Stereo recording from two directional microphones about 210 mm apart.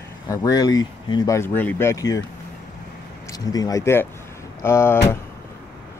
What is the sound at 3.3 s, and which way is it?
Speech, 15° left (ahead or behind).